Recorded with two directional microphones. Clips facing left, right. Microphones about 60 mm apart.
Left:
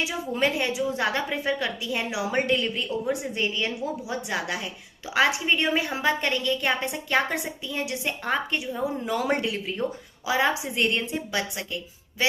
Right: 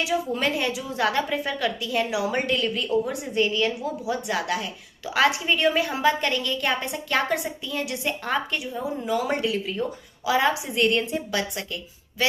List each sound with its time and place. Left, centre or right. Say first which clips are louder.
0.3 s a woman's voice: even; left
9.0 s speech: right 3 dB; left
9.8 s a woman's voice: even; left